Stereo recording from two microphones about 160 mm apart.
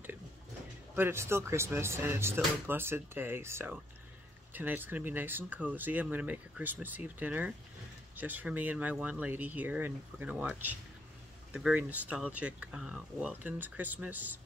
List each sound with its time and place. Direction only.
0.9 s speech: 15° right (ahead or behind)